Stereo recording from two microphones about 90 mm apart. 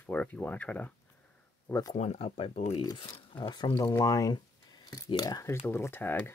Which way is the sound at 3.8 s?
40° left (ahead or behind).